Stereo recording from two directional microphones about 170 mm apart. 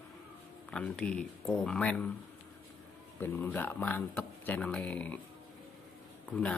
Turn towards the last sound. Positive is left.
turn(degrees=5)  # may be behind; listen again after turning